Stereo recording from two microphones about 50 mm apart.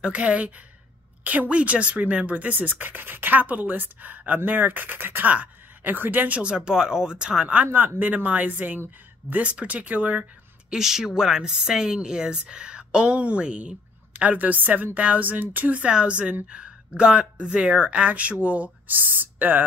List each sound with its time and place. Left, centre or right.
0.0 s a woman's voice: right
5.3 s a sound: right
5.9 s speech: right
6.5 s speech: centre
7.6 s a woman's voice: right
10.7 s a woman's voice: centre; by 15.7 s right
15.7 s a woman's voice: right